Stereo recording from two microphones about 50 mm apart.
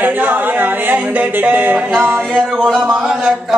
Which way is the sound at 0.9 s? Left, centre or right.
Right.